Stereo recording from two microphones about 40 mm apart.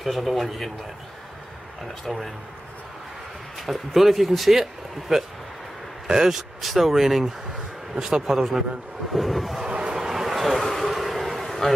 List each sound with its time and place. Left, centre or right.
0.0 s speech: centre
2.0 s speech: centre
3.5 s speech: centre
7.9 s a man's voice: centre
9.7 s a sound: right
9.9 s a sound: centre